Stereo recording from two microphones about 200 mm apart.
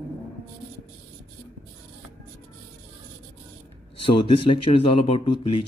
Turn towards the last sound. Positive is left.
turn(degrees=25)  # may be behind; listen again after turning